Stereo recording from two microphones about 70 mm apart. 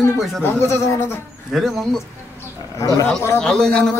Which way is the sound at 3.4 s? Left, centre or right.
Centre.